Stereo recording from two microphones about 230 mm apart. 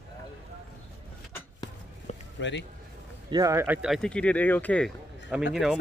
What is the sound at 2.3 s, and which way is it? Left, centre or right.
Speech, left.